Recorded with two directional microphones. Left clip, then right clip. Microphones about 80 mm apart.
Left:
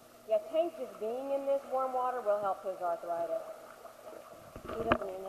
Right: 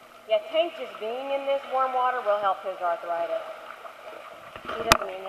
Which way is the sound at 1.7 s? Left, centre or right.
Right.